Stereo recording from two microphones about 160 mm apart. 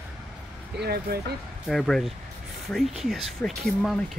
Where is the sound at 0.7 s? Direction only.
85° right.